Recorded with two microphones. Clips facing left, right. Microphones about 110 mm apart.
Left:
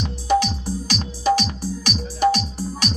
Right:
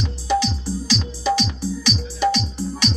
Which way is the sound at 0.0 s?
50° left (ahead or behind).